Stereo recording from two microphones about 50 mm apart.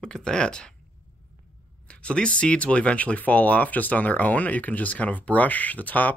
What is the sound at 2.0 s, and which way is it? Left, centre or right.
Speech, left.